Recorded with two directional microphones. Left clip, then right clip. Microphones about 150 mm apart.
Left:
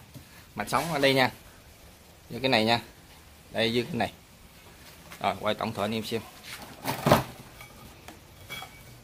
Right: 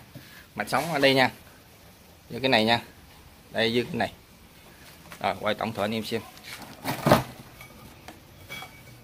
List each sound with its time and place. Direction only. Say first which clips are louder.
0.6 s speech: right 2 dB; 15° left (ahead or behind)
2.3 s speech: right 2 dB; 5° left (ahead or behind)
5.2 s speech: right 1 dB; 20° left (ahead or behind)
6.8 s a sound: right 2 dB; 35° right (ahead or behind)